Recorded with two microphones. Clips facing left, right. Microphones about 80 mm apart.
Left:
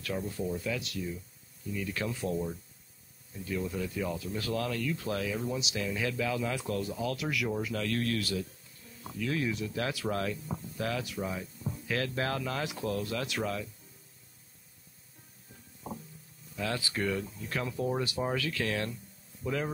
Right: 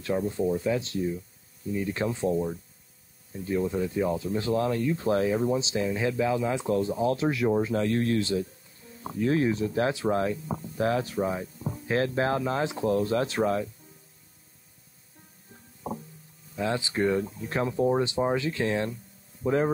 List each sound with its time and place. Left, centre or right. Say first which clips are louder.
0.2 s speech: right 8 dB; right
3.4 s speech: right 7 dB; right
15.8 s music: right 7 dB; centre
16.5 s speech: right 6 dB; right